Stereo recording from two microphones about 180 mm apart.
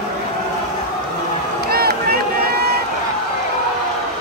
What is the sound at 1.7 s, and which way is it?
Run, 60° right (ahead or behind).